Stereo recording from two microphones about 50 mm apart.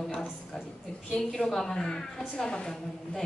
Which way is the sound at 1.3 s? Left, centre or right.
Centre.